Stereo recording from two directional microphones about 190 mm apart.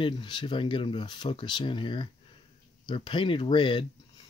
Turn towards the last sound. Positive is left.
turn(degrees=25)  # may be behind; listen again after turning